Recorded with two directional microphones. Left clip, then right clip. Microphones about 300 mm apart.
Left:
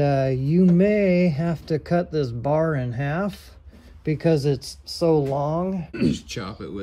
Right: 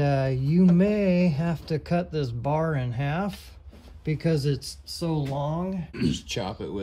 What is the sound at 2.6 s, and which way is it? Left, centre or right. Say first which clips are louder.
Speech: left 5 dB; centre.